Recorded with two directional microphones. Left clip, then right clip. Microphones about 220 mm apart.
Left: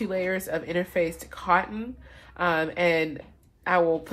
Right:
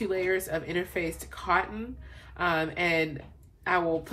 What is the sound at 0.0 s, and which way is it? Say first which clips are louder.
Speech: left 1 dB; 40° left (ahead or behind).